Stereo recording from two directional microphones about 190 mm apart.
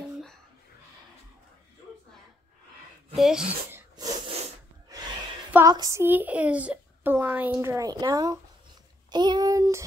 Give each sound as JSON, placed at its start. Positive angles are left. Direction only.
{"t": 3.2, "sound": "speech", "side_deg": -5}
{"t": 3.9, "sound": "a sound", "side_deg": -20}
{"t": 5.5, "sound": "a child's voice", "side_deg": -15}